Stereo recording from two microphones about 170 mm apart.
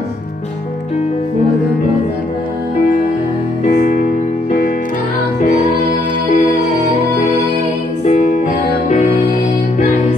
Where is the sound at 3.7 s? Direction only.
55° left (ahead or behind).